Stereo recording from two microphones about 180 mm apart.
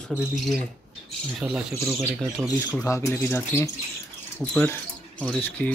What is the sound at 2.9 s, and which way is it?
Speech, 15° left (ahead or behind).